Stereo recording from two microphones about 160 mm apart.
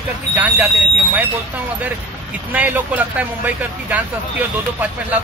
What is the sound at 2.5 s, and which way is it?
Speech, 10° right (ahead or behind).